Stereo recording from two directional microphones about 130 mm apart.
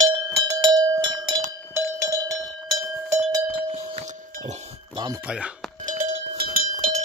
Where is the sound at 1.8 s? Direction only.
25° right (ahead or behind).